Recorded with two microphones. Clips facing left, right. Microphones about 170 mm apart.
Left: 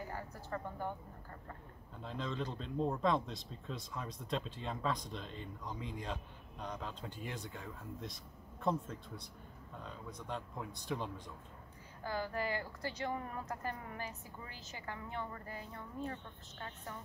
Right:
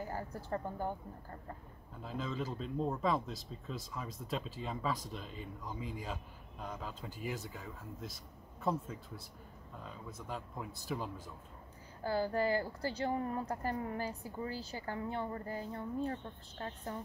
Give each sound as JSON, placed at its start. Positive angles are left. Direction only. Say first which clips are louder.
{"t": 0.1, "sound": "a woman's voice", "louder": "right 4 dB", "side_deg": -35}
{"t": 2.0, "sound": "speech", "louder": "right 1 dB", "side_deg": -5}
{"t": 12.0, "sound": "a woman's voice", "louder": "right 5 dB", "side_deg": -35}